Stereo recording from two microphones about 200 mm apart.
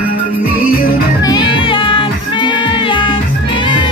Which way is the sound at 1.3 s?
25° left (ahead or behind).